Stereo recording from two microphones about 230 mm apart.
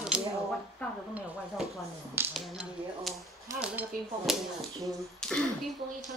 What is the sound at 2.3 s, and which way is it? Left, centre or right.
Speech, centre.